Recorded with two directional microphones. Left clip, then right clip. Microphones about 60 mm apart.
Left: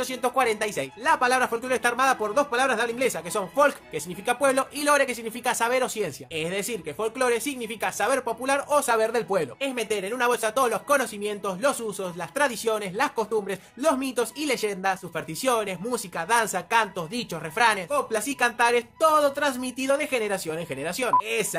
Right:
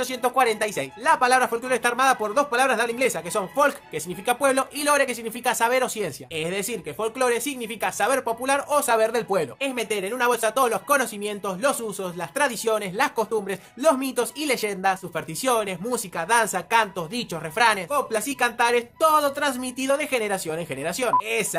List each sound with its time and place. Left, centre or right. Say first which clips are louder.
0.0 s speech: right 3 dB; right
11.4 s speech: right 1 dB; right
16.2 s speech: right 2 dB; right
17.6 s speech: right 2 dB; centre
17.8 s speech: right 1 dB; right
18.3 s speech: even; centre; by 21.2 s right
21.2 s speech: right 1 dB; centre